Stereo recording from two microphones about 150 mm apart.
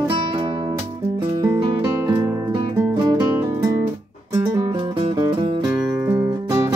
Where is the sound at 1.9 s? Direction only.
20° right (ahead or behind).